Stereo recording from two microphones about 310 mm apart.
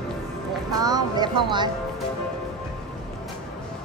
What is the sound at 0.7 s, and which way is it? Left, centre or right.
Speech, centre.